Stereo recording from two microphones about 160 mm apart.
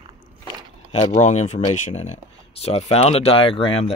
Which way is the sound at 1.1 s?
50° left (ahead or behind).